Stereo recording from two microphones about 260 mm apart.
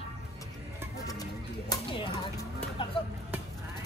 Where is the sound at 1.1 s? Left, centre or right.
Centre.